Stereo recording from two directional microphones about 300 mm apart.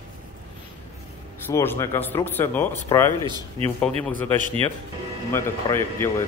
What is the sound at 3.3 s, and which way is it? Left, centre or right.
Speech, centre.